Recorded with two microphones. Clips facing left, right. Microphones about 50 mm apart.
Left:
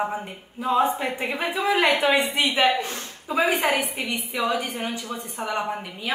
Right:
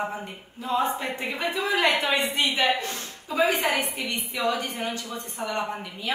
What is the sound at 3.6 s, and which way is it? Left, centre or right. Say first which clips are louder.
Speech: left 2 dB; centre.